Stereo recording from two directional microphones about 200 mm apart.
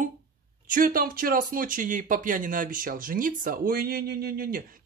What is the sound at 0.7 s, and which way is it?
Speech, 45° right (ahead or behind).